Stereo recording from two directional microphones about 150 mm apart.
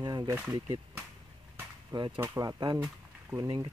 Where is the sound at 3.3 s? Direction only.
30° right (ahead or behind).